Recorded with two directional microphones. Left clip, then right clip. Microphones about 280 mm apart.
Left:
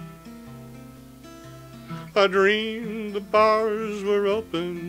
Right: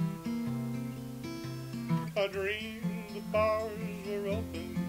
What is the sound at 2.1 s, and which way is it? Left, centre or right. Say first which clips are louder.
Music: left 14 dB; left.